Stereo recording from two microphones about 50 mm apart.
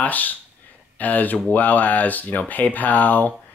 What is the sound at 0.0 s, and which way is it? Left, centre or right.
Speech, left.